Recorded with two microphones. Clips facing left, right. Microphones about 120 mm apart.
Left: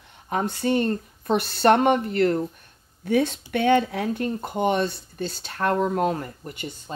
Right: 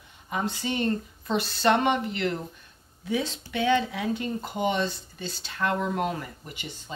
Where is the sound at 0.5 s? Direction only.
50° left (ahead or behind).